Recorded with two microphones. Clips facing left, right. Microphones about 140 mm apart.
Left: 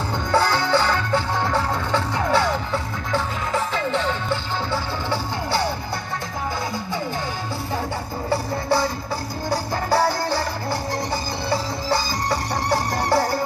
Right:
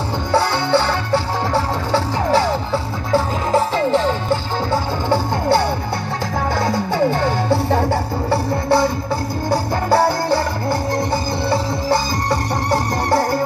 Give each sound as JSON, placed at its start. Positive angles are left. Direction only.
{"t": 0.3, "sound": "music", "side_deg": -25}
{"t": 5.1, "sound": "music", "side_deg": -50}
{"t": 6.5, "sound": "music", "side_deg": -75}